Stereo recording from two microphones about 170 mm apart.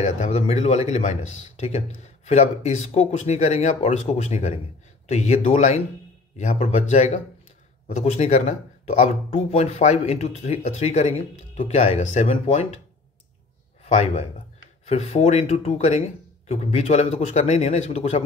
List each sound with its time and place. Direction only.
0.0 s speech: 40° left (ahead or behind)
13.8 s speech: 40° left (ahead or behind)